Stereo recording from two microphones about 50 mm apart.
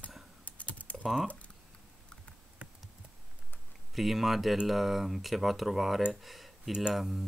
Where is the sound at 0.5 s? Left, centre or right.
Left.